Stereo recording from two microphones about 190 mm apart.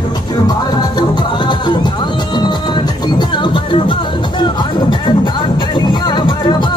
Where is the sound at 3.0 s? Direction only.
25° left (ahead or behind).